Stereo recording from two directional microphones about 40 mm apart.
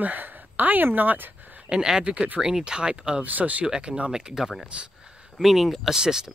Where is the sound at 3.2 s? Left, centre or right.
Right.